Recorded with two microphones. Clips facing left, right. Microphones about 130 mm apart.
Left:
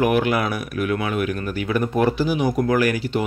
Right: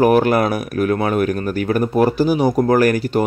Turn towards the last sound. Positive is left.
turn(degrees=-45)  # may be behind; listen again after turning